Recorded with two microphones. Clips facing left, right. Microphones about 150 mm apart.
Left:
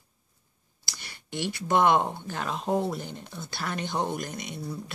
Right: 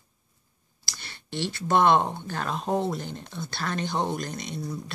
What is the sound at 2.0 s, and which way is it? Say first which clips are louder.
Speech: right 1 dB; 15° right (ahead or behind).